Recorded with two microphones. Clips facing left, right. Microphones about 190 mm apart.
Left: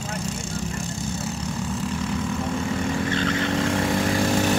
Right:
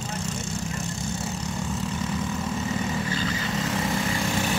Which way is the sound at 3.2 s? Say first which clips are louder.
Left 5 dB; 75° left (ahead or behind).